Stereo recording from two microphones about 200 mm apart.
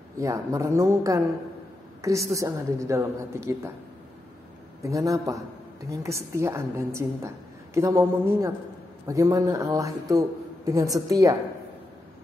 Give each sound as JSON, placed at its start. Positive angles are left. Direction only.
{"t": 0.2, "sound": "a woman's voice", "side_deg": -15}
{"t": 4.8, "sound": "a woman's voice", "side_deg": -15}